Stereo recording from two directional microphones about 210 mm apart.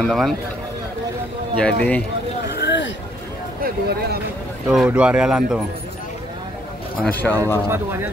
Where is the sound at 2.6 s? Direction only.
60° left (ahead or behind).